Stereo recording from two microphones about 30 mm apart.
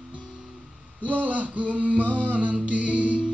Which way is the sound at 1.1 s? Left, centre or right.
Right.